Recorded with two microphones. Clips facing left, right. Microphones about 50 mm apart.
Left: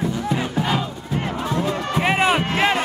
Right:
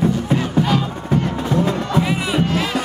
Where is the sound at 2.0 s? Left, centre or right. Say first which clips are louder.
Left 3 dB; left.